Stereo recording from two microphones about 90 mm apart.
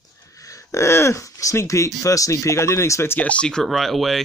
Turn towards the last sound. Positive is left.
turn(degrees=0)  # may be behind; listen again after turning